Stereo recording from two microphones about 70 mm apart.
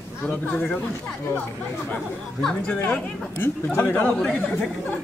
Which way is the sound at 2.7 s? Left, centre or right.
Left.